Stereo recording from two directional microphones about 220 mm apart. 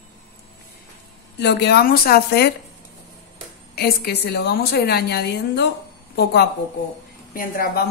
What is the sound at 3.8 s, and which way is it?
A woman's voice, 45° left (ahead or behind).